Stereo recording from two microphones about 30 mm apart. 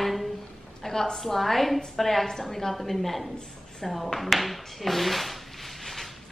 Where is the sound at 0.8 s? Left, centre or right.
Centre.